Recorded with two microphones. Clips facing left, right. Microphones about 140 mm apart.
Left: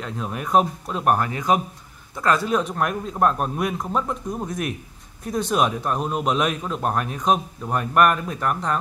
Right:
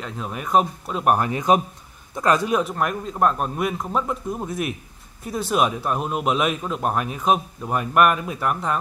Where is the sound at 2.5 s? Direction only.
Centre (ahead or behind).